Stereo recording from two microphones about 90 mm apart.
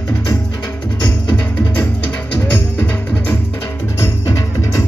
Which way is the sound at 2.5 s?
20° left (ahead or behind).